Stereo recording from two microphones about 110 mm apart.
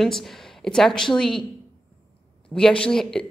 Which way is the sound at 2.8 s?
5° left (ahead or behind).